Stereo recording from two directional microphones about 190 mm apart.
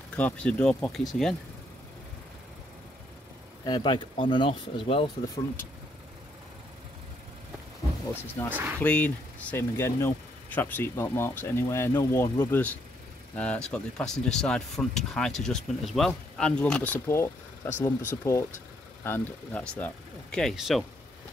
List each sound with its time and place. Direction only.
0.1 s speech: 5° left (ahead or behind)
3.6 s speech: 25° left (ahead or behind)
8.5 s speech: 10° right (ahead or behind)
8.7 s speech: 10° left (ahead or behind)